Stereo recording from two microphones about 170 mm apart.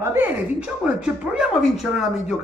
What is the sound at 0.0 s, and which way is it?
Speech, 10° right (ahead or behind).